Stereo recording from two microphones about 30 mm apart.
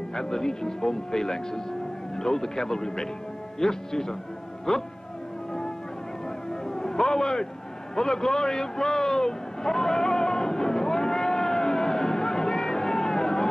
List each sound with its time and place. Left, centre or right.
0.1 s speech: centre
6.2 s music: centre
7.9 s a sound: centre